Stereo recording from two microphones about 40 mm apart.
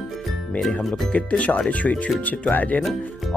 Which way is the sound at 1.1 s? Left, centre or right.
Left.